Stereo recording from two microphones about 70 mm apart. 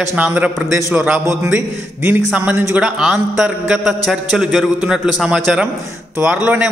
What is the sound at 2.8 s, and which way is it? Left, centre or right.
A man's voice, centre.